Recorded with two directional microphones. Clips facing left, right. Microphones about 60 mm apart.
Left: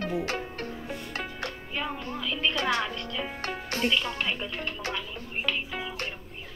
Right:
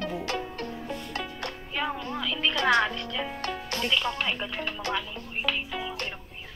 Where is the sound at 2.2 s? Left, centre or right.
Centre.